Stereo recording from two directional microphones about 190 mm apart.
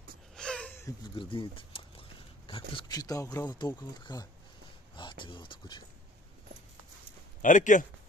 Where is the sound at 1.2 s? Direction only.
25° left (ahead or behind).